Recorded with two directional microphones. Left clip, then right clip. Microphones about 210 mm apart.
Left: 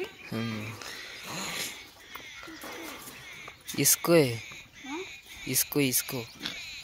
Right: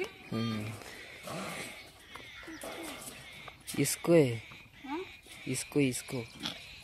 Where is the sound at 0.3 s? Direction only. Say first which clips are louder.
Left 2 dB; 5° right (ahead or behind).